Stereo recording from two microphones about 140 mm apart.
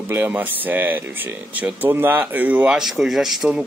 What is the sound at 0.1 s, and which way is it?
Speech, 15° right (ahead or behind).